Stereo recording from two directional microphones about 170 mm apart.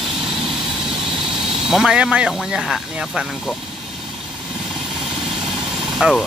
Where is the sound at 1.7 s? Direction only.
5° right (ahead or behind).